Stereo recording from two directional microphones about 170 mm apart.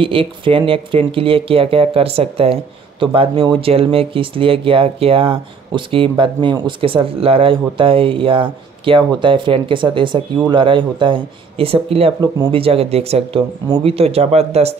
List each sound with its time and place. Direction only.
0.0 s speech: 30° right (ahead or behind)